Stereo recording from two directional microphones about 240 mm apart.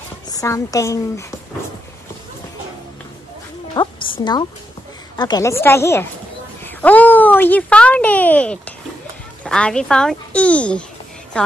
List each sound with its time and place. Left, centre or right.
0.3 s a woman's voice: centre
3.7 s a woman's voice: centre
6.6 s a sound: centre
9.4 s speech: centre